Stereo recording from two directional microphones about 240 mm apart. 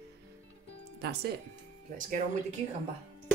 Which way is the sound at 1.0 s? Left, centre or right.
Right.